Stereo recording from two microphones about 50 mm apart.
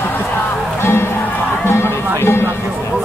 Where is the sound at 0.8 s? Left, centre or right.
Left.